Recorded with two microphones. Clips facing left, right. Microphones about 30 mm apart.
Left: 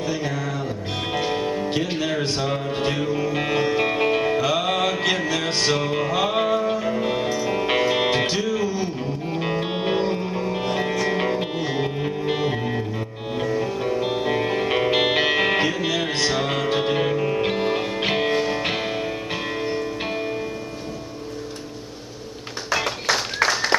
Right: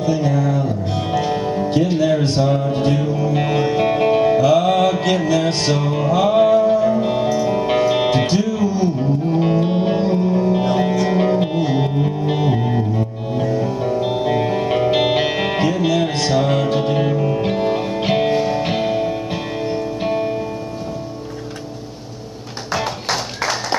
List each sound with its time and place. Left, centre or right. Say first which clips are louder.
0.0 s music: right 7 dB; centre
1.7 s music: right 7 dB; left
3.3 s music: right 4 dB; centre
10.5 s music: right 6 dB; centre
11.4 s music: right 6 dB; centre